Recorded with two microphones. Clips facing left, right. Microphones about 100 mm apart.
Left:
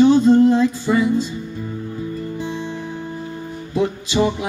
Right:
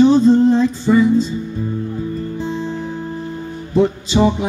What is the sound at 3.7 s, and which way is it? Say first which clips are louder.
Music: right 4 dB; 30° right (ahead or behind).